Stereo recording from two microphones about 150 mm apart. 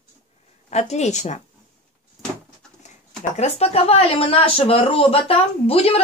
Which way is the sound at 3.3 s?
45° left (ahead or behind).